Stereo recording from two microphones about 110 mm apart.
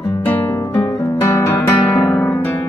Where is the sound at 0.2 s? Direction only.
20° left (ahead or behind).